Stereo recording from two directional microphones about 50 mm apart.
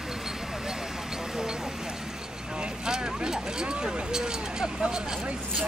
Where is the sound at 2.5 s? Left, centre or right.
Centre.